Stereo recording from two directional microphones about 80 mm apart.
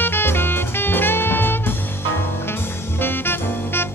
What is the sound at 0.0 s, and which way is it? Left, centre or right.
Music, left.